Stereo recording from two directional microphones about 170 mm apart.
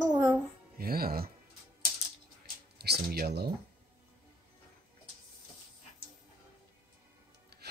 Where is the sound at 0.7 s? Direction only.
60° right (ahead or behind).